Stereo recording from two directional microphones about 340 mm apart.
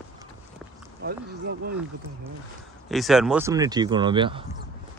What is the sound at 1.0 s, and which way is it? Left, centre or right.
Speech, right.